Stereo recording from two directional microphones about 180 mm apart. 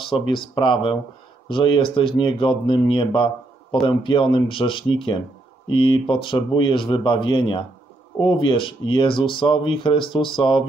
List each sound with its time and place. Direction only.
0.0 s speech: 30° left (ahead or behind)